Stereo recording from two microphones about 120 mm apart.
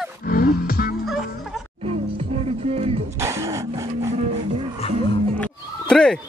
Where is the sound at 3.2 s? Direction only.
25° right (ahead or behind).